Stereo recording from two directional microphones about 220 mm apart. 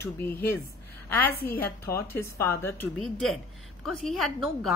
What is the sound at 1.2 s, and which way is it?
Speech, 40° left (ahead or behind).